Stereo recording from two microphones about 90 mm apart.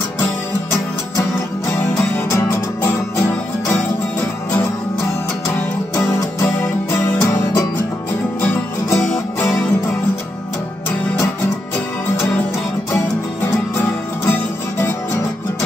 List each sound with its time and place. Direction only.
1.8 s music: 20° left (ahead or behind)
5.9 s music: 30° left (ahead or behind)
13.5 s music: 30° left (ahead or behind)